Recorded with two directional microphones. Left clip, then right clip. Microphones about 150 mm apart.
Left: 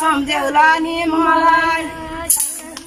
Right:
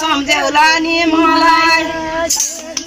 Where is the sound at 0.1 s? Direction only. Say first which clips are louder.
Right 3 dB; 10° left (ahead or behind).